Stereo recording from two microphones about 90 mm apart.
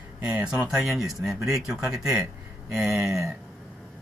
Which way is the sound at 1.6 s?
10° right (ahead or behind).